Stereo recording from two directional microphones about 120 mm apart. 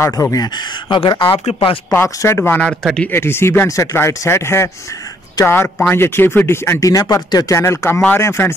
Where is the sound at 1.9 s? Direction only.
20° left (ahead or behind).